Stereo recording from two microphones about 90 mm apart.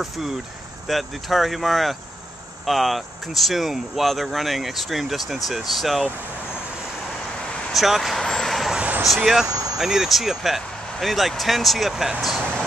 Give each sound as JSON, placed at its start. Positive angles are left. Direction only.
{"t": 0.0, "sound": "speech", "side_deg": -5}
{"t": 7.7, "sound": "speech", "side_deg": 0}
{"t": 8.7, "sound": "vehicle", "side_deg": -15}
{"t": 9.0, "sound": "speech", "side_deg": -5}